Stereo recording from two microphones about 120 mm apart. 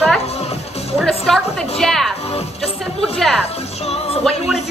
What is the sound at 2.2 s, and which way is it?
Speech, 60° left (ahead or behind).